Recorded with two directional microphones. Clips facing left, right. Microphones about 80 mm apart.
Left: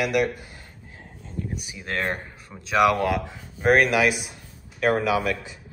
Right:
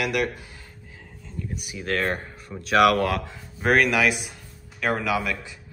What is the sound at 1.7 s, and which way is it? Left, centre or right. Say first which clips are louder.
Speech: right 3 dB; centre.